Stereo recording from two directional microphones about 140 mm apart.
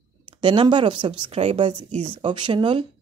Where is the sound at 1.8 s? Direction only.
50° right (ahead or behind).